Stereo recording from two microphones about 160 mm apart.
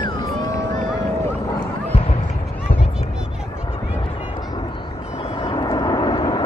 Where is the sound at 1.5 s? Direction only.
35° left (ahead or behind).